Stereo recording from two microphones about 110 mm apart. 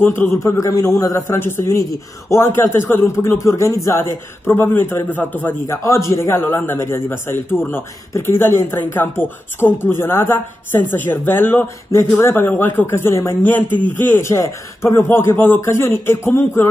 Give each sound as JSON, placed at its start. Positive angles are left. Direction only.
{"t": 0.0, "sound": "a man's voice", "side_deg": 20}
{"t": 5.9, "sound": "a man's voice", "side_deg": 30}